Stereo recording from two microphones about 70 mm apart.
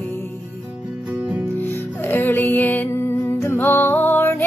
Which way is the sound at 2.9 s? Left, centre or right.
Left.